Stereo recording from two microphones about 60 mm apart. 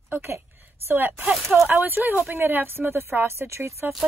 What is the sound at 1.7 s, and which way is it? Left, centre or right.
Speech, right.